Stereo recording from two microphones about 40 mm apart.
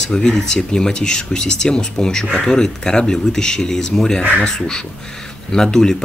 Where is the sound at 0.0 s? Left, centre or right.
Centre.